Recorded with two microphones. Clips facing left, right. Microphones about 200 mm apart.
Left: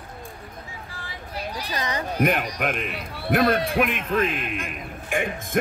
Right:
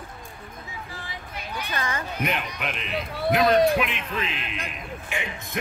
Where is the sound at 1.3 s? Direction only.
35° left (ahead or behind).